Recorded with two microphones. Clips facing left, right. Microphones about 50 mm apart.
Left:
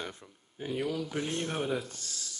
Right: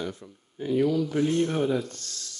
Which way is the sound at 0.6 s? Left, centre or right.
Centre.